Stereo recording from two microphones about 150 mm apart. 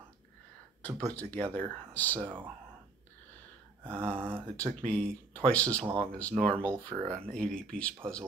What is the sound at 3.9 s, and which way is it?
Speech, 10° left (ahead or behind).